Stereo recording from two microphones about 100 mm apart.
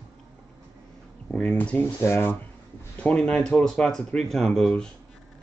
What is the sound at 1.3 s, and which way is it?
Speech, 15° left (ahead or behind).